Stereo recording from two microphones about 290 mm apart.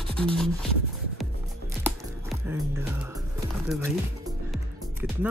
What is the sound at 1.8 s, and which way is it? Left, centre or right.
Music, centre.